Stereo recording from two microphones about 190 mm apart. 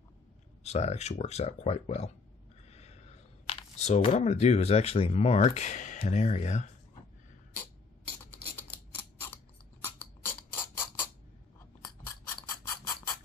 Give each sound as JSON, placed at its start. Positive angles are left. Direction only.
{"t": 0.7, "sound": "speech", "side_deg": 35}
{"t": 9.8, "sound": "a sound", "side_deg": 10}
{"t": 11.8, "sound": "scissors", "side_deg": 15}